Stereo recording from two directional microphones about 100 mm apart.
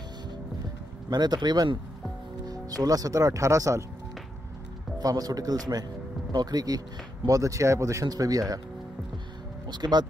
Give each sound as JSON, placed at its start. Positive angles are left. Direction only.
{"t": 1.1, "sound": "speech", "side_deg": -45}
{"t": 4.9, "sound": "speech", "side_deg": -40}
{"t": 9.7, "sound": "speech", "side_deg": -45}